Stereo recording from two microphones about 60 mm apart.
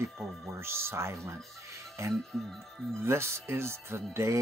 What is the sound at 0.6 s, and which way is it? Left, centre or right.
Speech, right.